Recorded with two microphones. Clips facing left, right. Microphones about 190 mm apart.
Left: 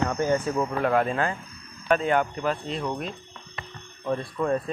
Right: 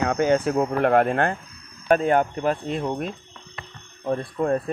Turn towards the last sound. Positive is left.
turn(degrees=-40)  # may be behind; listen again after turning